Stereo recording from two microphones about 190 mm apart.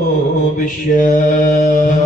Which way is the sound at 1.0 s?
45° left (ahead or behind).